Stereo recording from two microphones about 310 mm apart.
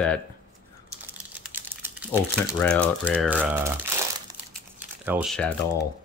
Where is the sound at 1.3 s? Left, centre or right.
Centre.